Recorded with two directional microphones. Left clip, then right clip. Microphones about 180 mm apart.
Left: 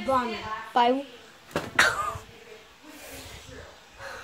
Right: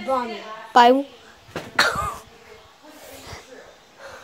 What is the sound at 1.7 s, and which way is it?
Cough, 45° right (ahead or behind).